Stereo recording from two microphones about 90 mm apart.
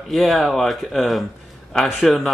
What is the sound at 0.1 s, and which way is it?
Speech, centre (ahead or behind).